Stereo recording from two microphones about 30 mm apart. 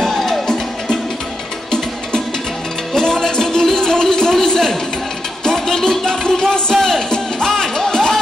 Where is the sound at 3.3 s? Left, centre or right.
Centre.